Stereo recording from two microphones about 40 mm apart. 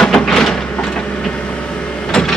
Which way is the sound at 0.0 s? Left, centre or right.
Centre.